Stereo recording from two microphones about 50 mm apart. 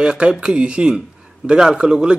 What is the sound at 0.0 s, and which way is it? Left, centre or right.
A man's voice, centre.